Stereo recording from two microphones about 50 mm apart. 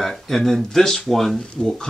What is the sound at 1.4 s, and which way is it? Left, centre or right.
Speech, centre.